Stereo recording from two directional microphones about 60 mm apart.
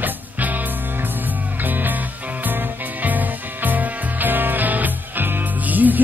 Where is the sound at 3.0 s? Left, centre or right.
Right.